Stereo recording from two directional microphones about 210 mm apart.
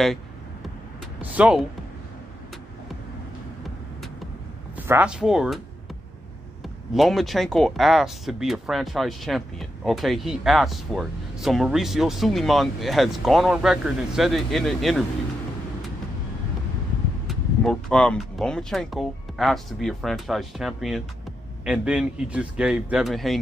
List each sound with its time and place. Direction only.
1.2 s speech: 5° right (ahead or behind)
4.7 s speech: 10° right (ahead or behind)
6.6 s speech: centre (ahead or behind)
17.3 s speech: centre (ahead or behind)